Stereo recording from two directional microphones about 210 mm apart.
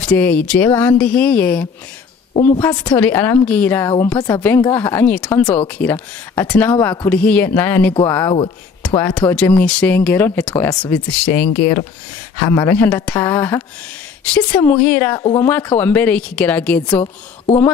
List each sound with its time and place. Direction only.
0.0 s speech: 5° left (ahead or behind)
2.3 s a woman's voice: 25° left (ahead or behind); by 17.0 s 5° left (ahead or behind)